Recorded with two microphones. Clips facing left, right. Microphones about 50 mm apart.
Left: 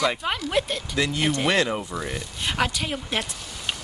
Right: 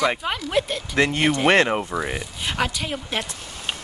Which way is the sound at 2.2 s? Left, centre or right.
Centre.